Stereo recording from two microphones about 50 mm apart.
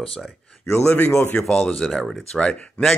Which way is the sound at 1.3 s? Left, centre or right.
Centre.